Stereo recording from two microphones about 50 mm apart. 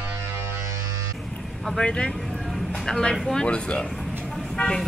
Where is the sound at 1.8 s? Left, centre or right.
Centre.